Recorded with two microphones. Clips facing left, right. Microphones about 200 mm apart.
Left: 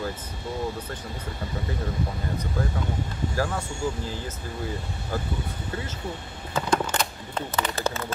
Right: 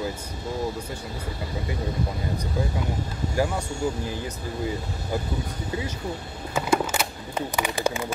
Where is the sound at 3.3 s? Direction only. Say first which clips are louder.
Right 3 dB; 15° right (ahead or behind).